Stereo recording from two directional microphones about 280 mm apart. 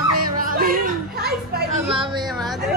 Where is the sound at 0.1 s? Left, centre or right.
Right.